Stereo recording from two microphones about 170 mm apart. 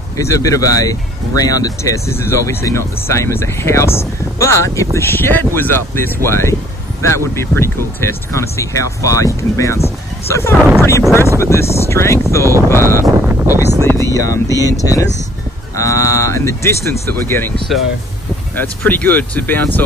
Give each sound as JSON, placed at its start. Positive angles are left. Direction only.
{"t": 0.2, "sound": "speech", "side_deg": 20}
{"t": 13.0, "sound": "a sound", "side_deg": -15}
{"t": 13.8, "sound": "speech", "side_deg": 15}
{"t": 18.6, "sound": "speech", "side_deg": 10}